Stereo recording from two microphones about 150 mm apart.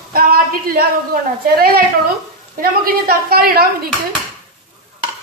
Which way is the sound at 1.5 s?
90° right.